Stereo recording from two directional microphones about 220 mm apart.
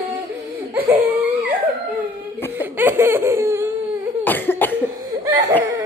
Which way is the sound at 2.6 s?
10° right (ahead or behind).